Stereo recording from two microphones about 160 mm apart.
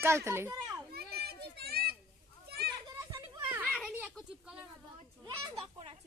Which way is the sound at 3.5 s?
5° right (ahead or behind).